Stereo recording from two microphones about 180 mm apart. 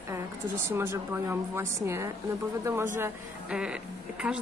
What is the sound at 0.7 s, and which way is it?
A woman's voice, 15° right (ahead or behind).